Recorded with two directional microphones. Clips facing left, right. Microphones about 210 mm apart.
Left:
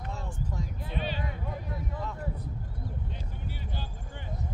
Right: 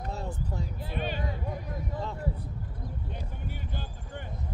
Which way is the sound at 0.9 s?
50° right (ahead or behind).